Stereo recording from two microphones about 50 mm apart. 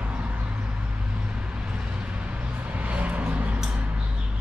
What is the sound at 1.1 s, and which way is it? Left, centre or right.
Vehicle, right.